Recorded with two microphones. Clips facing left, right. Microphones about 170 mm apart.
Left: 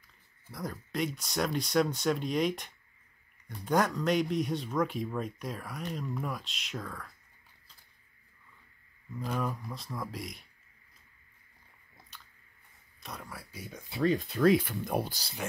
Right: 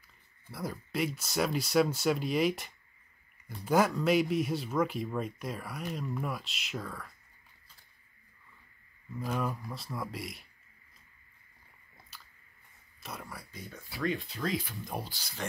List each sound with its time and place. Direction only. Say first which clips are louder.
0.5 s speech: right 1 dB; 5° right (ahead or behind)
9.2 s speech: even; centre (ahead or behind)
12.1 s biting: even; centre (ahead or behind)
13.0 s speech: even; centre (ahead or behind); by 14.0 s 20° left (ahead or behind)
14.3 s speech: left 10 dB; 60° left (ahead or behind)